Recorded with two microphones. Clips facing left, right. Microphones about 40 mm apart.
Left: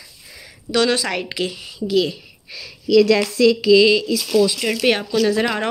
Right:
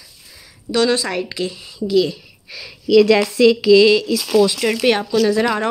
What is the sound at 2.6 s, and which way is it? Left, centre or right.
Speech, right.